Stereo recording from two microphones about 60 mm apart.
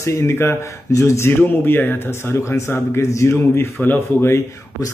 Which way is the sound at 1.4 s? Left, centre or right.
Left.